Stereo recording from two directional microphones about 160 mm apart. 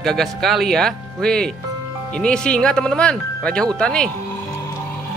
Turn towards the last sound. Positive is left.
turn(degrees=5)  # may be behind; listen again after turning